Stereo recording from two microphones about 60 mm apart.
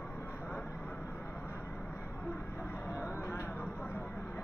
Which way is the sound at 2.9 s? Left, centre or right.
Left.